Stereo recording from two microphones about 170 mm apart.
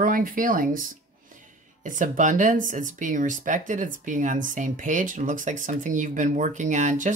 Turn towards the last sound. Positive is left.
turn(degrees=-45)  # may be behind; listen again after turning